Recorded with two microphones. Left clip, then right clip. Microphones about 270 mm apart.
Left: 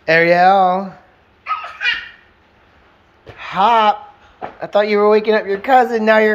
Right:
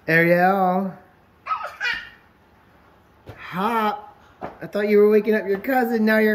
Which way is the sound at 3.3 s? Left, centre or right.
Centre.